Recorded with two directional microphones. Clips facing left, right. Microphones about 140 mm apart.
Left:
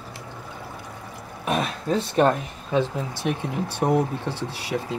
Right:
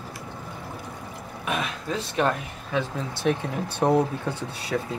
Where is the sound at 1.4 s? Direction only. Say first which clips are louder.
Left 4 dB; 40° left (ahead or behind).